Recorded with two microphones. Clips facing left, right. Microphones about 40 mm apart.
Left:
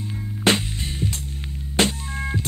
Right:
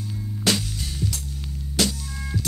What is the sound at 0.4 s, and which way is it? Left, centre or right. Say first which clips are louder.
Music: left 4 dB; left.